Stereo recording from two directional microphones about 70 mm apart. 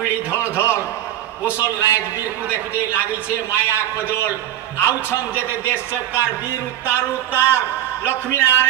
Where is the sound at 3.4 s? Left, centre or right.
Left.